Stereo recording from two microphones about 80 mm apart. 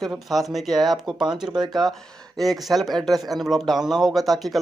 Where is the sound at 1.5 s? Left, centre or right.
Right.